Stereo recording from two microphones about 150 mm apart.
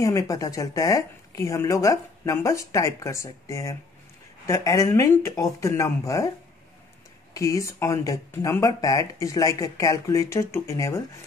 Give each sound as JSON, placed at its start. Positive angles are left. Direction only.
{"t": 0.0, "sound": "speech", "side_deg": 20}
{"t": 7.3, "sound": "speech", "side_deg": 20}